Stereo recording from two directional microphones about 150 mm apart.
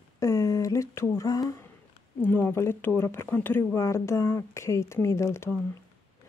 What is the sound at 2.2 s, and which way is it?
Speech, 15° left (ahead or behind).